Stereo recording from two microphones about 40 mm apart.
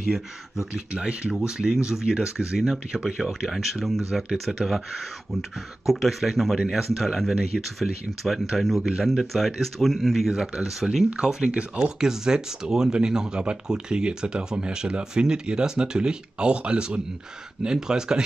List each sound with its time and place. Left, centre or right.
0.1 s speech: centre
5.9 s speech: centre
11.5 s speech: right
12.0 s speech: centre